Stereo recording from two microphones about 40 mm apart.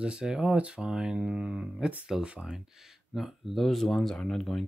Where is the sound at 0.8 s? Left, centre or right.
Centre.